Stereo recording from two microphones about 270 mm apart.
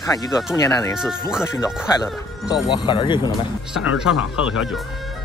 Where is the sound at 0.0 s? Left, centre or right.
Centre.